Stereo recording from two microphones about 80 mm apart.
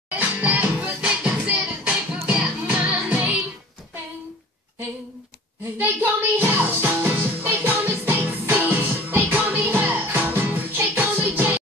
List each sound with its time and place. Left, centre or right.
0.1 s music: right
5.8 s music: right